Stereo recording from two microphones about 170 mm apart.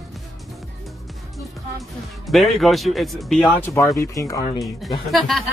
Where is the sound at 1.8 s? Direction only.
Centre (ahead or behind).